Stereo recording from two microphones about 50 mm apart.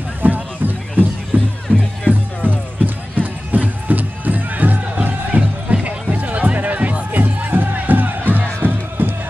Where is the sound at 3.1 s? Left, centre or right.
Right.